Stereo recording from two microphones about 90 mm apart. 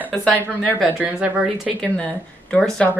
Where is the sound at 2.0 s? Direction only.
10° left (ahead or behind).